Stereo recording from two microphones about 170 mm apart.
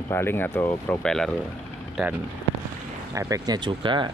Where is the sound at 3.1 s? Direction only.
20° right (ahead or behind).